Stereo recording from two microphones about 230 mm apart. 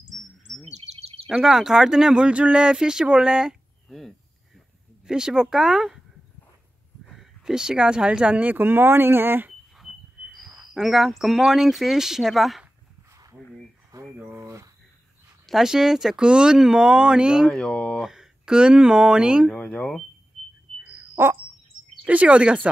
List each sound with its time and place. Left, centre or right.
0.0 s chirp: right
0.7 s bird vocalization: right
1.3 s speech: centre
7.1 s speech: centre
13.9 s a sound: centre
15.4 s speech: centre
21.1 s chirp: centre
22.0 s speech: centre